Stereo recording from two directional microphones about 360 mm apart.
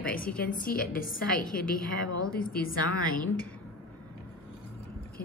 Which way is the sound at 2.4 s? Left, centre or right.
Left.